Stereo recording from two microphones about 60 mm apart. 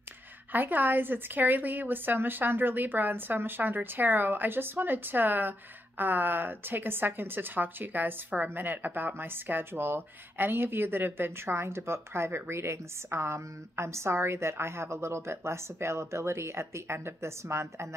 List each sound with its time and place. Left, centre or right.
0.5 s a woman's voice: right